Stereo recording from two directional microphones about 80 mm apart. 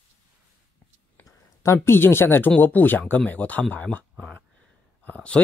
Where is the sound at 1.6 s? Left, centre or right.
Left.